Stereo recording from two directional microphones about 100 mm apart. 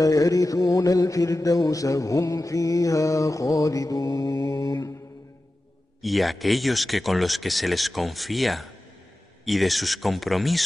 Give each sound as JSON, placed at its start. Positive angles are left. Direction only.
{"t": 0.0, "sound": "mantra", "side_deg": 35}
{"t": 6.0, "sound": "speech", "side_deg": 0}